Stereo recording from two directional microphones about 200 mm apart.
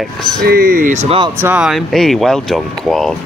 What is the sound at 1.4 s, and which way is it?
Speech, 5° right (ahead or behind).